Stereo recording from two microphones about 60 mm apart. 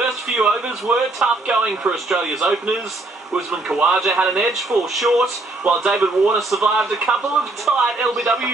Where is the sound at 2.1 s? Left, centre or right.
Centre.